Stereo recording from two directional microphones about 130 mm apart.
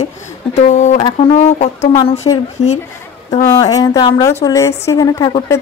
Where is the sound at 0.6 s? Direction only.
65° left (ahead or behind).